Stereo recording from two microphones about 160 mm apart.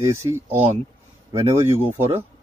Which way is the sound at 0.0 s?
15° right (ahead or behind).